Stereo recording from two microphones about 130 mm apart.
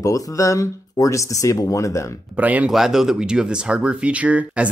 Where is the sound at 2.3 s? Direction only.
10° right (ahead or behind).